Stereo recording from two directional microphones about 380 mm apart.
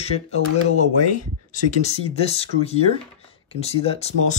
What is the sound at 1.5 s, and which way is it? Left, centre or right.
Speech, centre.